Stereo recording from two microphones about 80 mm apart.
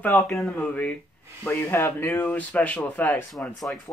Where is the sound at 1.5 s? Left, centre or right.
Left.